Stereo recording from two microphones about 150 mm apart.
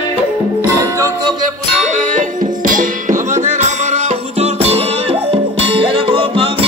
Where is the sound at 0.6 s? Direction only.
20° right (ahead or behind).